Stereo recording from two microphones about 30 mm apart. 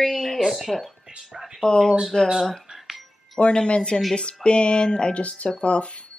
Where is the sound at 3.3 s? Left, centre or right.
Left.